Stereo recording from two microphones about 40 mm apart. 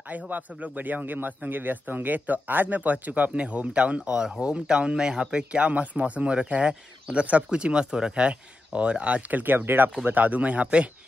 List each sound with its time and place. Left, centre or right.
0.1 s a man's voice: right
9.4 s speech: right
10.0 s speech: right